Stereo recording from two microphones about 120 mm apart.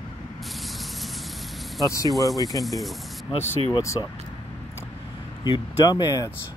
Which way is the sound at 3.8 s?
25° left (ahead or behind).